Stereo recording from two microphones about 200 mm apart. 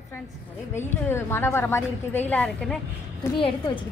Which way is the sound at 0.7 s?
10° left (ahead or behind).